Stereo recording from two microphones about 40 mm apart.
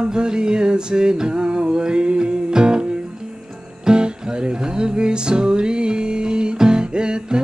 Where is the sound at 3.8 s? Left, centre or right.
Right.